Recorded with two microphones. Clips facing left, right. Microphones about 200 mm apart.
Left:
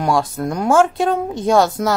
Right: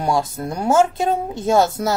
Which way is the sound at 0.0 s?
25° right (ahead or behind).